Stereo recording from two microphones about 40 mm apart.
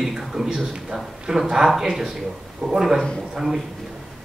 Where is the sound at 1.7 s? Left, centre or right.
Centre.